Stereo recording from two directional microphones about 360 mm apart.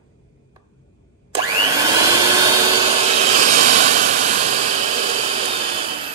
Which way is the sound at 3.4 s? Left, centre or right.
Right.